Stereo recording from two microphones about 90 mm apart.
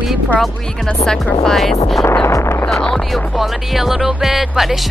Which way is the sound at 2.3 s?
30° left (ahead or behind).